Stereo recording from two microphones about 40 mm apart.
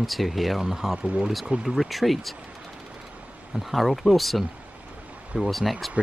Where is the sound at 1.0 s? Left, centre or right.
Right.